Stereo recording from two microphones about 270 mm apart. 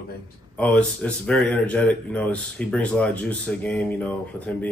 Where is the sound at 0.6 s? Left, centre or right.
Centre.